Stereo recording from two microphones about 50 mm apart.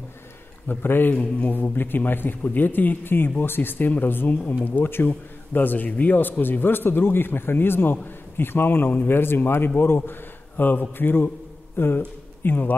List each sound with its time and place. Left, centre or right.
0.7 s a man's voice: left